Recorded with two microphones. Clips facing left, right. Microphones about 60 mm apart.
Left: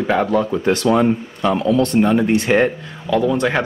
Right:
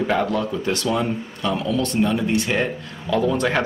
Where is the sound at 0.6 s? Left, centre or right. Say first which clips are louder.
Left 9 dB; left.